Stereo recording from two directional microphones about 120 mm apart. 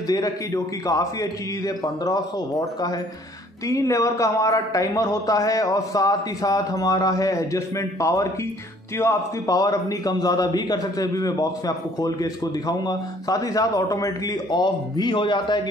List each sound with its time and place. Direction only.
0.1 s a man's voice: 30° left (ahead or behind)